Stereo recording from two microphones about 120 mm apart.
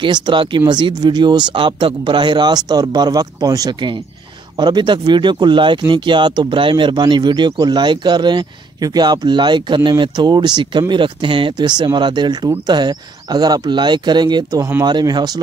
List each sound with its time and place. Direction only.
0.0 s speech: 40° right (ahead or behind)